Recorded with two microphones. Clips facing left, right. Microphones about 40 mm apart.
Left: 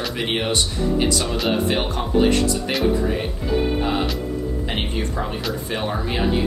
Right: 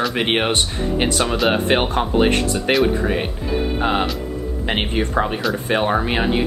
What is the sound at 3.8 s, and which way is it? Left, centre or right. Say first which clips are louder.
Speech: right 3 dB; right.